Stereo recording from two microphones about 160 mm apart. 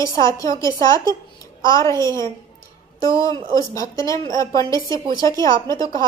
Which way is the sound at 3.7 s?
20° left (ahead or behind).